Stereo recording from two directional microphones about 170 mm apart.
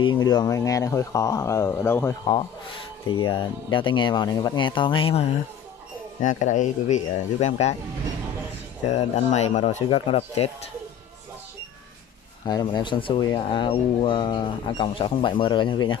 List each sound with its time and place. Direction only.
0.0 s speech: 25° left (ahead or behind)
3.1 s speech: 30° left (ahead or behind)
6.2 s speech: 45° left (ahead or behind)
8.8 s speech: 40° left (ahead or behind)
12.4 s speech: 25° left (ahead or behind)